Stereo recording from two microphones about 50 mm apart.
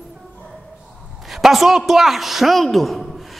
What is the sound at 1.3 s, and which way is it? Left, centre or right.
A man's voice, centre.